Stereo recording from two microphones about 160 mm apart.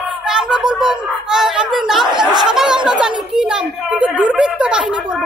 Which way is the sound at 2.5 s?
5° right (ahead or behind).